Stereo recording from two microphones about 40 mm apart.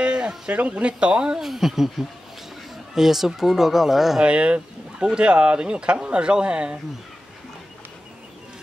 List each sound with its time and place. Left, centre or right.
0.0 s a sound: right
0.5 s speech: right
1.4 s speech: centre
4.2 s speech: right